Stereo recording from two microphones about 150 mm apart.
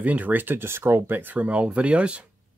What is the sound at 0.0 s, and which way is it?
Speech, 10° right (ahead or behind).